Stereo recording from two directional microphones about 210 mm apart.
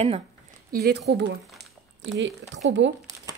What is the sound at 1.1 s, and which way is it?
Speech, 55° right (ahead or behind).